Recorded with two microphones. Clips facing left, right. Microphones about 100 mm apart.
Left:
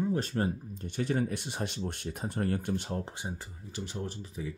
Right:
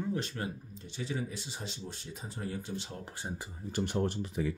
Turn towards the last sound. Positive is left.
turn(degrees=-75)  # may be behind; listen again after turning